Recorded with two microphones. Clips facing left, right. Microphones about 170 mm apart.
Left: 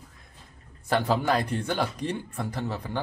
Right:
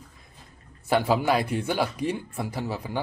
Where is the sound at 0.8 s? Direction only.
10° right (ahead or behind).